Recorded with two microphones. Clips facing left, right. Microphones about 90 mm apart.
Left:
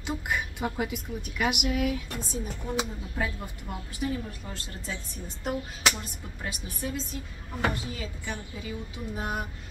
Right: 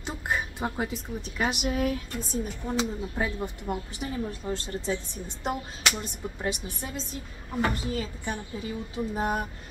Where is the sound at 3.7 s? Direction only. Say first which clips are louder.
Right 7 dB; 25° right (ahead or behind).